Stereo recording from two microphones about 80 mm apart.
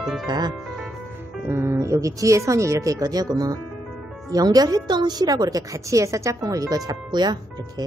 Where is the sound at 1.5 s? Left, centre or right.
Right.